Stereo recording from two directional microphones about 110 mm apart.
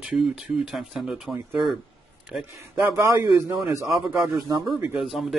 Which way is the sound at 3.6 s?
30° right (ahead or behind).